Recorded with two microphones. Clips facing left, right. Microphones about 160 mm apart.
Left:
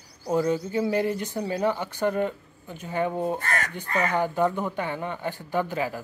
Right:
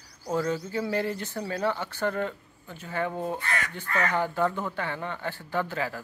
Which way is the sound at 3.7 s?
15° left (ahead or behind).